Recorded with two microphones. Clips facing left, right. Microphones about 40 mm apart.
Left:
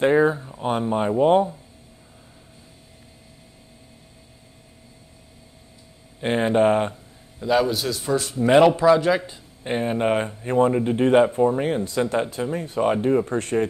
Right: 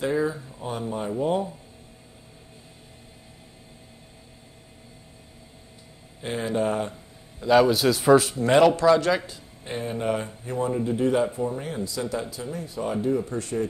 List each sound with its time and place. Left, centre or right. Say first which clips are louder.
0.0 s speech: left 7 dB; left
6.2 s speech: left 7 dB; left
7.3 s a man's voice: right 2 dB; centre
8.4 s a man's voice: left 3 dB; centre
9.7 s speech: left 5 dB; left